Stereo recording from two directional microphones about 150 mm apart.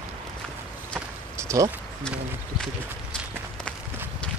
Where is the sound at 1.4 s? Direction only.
20° right (ahead or behind).